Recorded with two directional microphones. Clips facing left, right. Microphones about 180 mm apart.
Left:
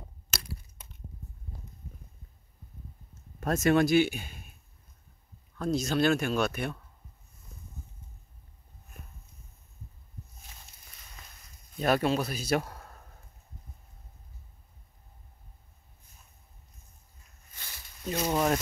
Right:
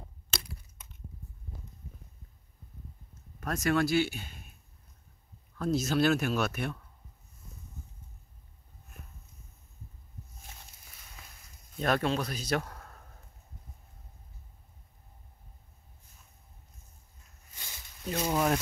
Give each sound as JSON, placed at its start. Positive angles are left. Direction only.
{"t": 3.3, "sound": "speech", "side_deg": 25}
{"t": 5.6, "sound": "speech", "side_deg": -5}
{"t": 11.8, "sound": "speech", "side_deg": 5}
{"t": 17.6, "sound": "snake", "side_deg": -15}
{"t": 18.1, "sound": "speech", "side_deg": 5}